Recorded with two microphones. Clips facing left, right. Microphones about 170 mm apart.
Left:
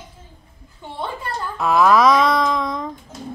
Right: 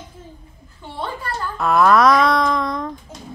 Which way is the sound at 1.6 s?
Centre (ahead or behind).